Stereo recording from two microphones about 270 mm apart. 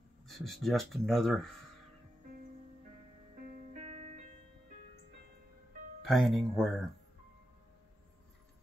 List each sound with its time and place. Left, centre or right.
0.3 s speech: centre
3.7 s music: right
6.0 s speech: centre